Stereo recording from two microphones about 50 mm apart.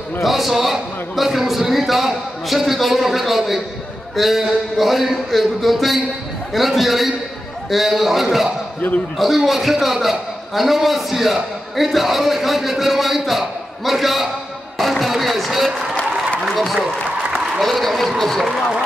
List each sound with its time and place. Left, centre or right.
0.2 s a man's voice: centre
8.8 s a man's voice: left
9.2 s a man's voice: centre